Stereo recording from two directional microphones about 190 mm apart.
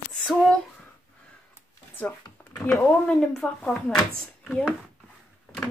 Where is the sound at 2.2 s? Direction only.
10° left (ahead or behind).